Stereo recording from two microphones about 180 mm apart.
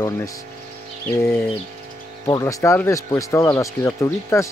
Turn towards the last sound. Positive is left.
turn(degrees=15)  # may be behind; listen again after turning